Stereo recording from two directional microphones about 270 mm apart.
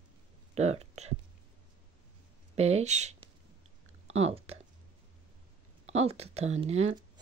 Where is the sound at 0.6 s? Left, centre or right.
Right.